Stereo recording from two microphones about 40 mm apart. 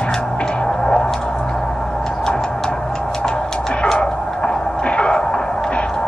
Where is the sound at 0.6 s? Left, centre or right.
Left.